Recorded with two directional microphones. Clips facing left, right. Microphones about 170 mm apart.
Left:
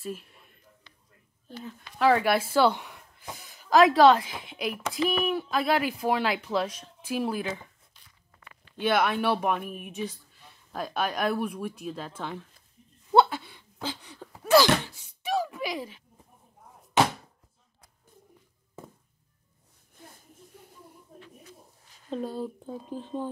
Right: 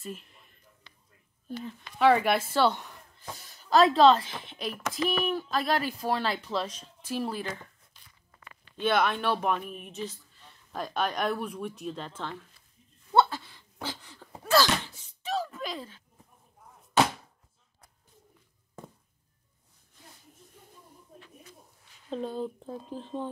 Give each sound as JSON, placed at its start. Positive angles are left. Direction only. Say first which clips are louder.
{"t": 0.0, "sound": "a man's voice", "louder": "left 4 dB", "side_deg": 5}
{"t": 2.0, "sound": "a woman's voice", "louder": "even", "side_deg": 0}
{"t": 8.8, "sound": "speech", "louder": "left 2 dB", "side_deg": 5}
{"t": 13.1, "sound": "a sound", "louder": "left 3 dB", "side_deg": 15}
{"t": 14.4, "sound": "sneeze", "louder": "left 4 dB", "side_deg": 15}
{"t": 15.2, "sound": "a sound", "louder": "left 3 dB", "side_deg": 10}
{"t": 22.1, "sound": "speech", "louder": "left 1 dB", "side_deg": 10}